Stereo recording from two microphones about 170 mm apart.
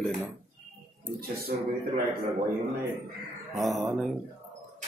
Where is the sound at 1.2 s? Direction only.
65° right (ahead or behind).